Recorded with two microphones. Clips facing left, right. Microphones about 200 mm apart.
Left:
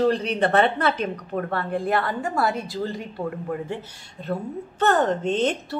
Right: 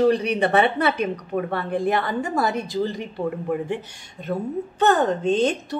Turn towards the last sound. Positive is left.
turn(degrees=-15)  # may be behind; listen again after turning